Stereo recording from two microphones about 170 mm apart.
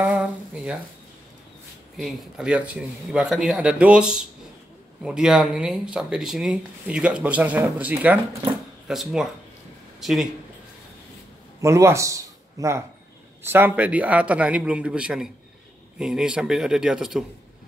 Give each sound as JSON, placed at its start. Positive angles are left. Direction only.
{"t": 0.0, "sound": "a sound", "side_deg": -5}
{"t": 2.0, "sound": "speech", "side_deg": 0}
{"t": 11.6, "sound": "a man's voice", "side_deg": -15}